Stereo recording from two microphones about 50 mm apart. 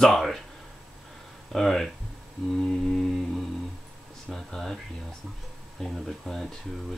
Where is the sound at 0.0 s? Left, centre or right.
Centre.